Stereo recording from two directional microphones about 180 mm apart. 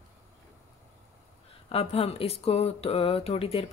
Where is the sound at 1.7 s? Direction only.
35° left (ahead or behind).